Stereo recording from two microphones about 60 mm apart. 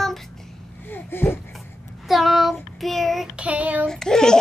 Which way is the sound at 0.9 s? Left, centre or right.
Left.